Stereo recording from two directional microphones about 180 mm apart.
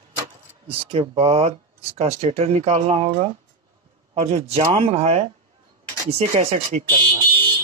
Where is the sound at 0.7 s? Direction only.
35° right (ahead or behind).